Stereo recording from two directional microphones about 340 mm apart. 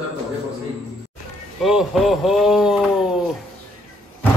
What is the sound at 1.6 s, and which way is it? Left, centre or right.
A man's voice, centre.